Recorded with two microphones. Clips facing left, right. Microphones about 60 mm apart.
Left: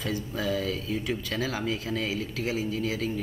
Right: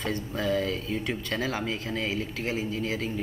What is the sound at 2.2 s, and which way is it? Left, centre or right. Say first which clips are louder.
Speech: even; right.